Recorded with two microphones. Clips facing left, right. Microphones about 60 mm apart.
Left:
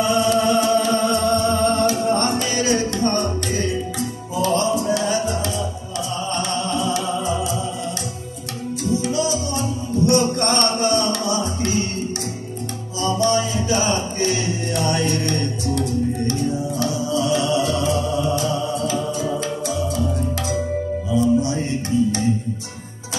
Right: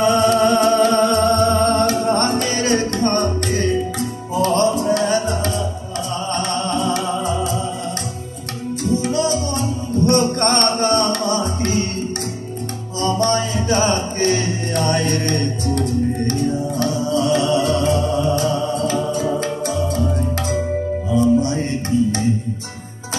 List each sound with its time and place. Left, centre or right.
0.0 s music: right
8.9 s music: right
13.0 s music: right